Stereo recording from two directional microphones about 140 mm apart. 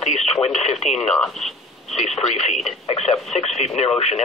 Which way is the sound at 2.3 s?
50° left (ahead or behind).